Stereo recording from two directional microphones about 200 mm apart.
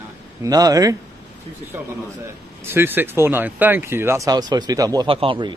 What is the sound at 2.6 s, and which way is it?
Speech, 10° right (ahead or behind).